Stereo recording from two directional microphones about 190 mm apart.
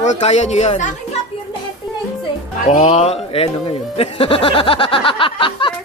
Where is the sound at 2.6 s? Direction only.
35° left (ahead or behind).